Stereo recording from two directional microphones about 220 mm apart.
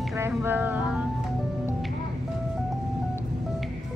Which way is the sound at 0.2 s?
10° right (ahead or behind).